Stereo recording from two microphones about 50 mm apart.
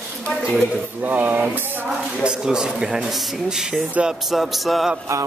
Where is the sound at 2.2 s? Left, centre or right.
Centre.